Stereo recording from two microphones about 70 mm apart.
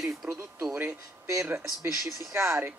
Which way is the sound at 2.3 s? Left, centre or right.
Right.